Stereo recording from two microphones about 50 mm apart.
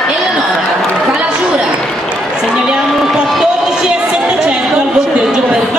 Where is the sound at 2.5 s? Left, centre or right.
Centre.